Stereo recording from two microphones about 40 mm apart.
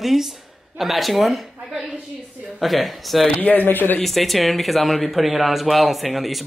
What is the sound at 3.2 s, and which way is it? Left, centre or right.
Speech, left.